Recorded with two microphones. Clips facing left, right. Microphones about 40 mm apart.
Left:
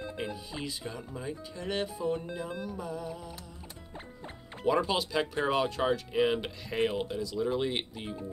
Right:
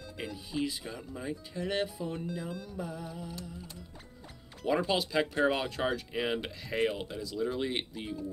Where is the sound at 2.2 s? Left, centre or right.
Left.